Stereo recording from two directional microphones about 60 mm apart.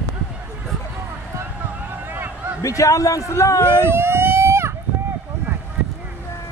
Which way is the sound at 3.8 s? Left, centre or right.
Right.